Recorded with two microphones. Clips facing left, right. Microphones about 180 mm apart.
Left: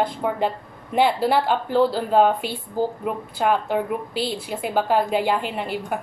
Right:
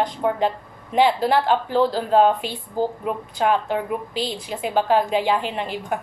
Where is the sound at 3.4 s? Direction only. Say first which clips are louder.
Even; 5° left (ahead or behind).